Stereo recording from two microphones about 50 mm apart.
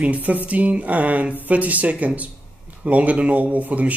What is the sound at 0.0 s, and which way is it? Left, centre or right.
A man's voice, right.